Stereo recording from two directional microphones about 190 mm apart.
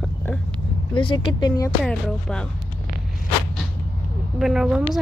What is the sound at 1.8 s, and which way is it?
Speech, 5° left (ahead or behind).